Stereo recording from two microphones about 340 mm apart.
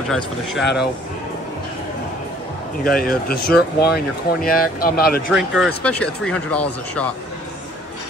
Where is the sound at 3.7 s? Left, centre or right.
Left.